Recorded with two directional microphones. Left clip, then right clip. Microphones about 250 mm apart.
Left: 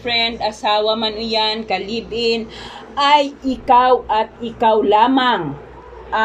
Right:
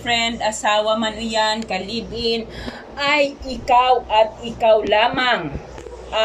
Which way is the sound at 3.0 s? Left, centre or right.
Left.